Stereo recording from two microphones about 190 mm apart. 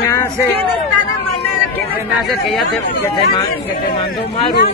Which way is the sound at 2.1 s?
Centre (ahead or behind).